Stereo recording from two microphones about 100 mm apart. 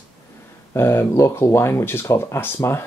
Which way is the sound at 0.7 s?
25° left (ahead or behind).